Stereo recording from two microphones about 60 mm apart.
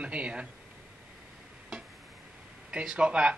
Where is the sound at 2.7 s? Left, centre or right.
Centre.